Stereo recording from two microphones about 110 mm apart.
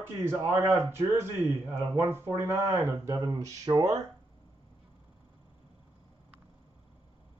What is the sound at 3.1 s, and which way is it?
Speech, 35° right (ahead or behind).